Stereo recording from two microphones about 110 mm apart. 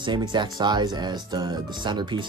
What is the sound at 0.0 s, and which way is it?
Speech, 45° right (ahead or behind).